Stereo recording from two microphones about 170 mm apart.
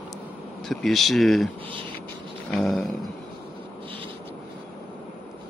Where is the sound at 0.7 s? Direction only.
Centre (ahead or behind).